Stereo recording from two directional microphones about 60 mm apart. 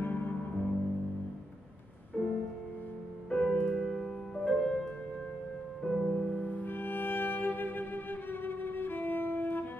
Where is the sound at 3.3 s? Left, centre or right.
Centre.